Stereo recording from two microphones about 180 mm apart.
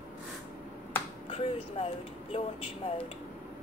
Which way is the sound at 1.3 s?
30° left (ahead or behind).